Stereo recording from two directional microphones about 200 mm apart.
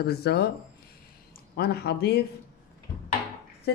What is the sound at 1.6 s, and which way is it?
Speech, 55° left (ahead or behind).